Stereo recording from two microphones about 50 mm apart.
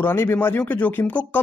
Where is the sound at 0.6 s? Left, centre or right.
Left.